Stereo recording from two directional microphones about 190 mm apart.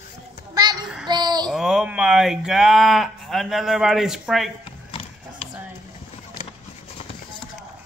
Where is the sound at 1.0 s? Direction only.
20° right (ahead or behind).